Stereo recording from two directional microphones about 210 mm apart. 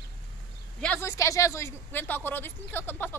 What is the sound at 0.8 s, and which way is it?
Speech, 10° left (ahead or behind).